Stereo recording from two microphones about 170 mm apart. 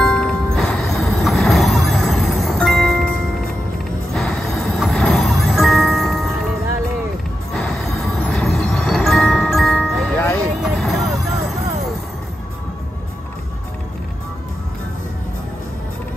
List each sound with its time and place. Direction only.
0.0 s music: 5° left (ahead or behind)
4.1 s music: centre (ahead or behind)
7.5 s music: centre (ahead or behind)